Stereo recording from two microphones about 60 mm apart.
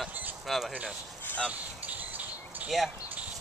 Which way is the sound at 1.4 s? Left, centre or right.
Right.